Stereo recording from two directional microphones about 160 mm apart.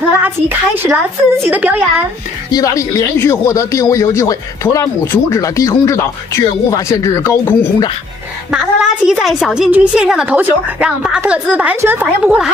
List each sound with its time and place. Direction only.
0.2 s a woman's voice: 10° right (ahead or behind)
2.5 s speech: 20° left (ahead or behind)
8.5 s a woman's voice: 5° right (ahead or behind)